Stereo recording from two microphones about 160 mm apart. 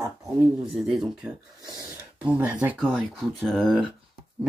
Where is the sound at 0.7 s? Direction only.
Centre (ahead or behind).